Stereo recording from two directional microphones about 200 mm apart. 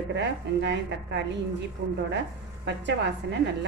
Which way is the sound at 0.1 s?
60° right (ahead or behind).